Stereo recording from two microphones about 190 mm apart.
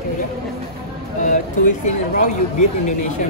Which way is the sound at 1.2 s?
40° left (ahead or behind).